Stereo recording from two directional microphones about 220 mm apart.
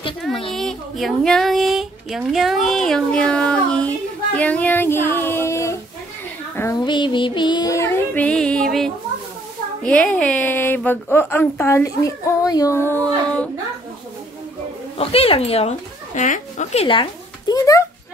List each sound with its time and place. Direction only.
0.5 s speech: centre (ahead or behind)
6.5 s child singing: 15° left (ahead or behind)
9.8 s a woman's voice: 5° left (ahead or behind)
15.0 s speech: 25° left (ahead or behind)